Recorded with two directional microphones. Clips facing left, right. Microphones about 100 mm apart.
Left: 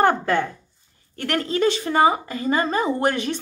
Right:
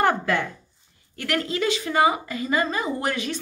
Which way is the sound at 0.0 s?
35° left (ahead or behind).